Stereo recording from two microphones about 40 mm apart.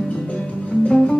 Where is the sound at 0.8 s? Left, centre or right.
Left.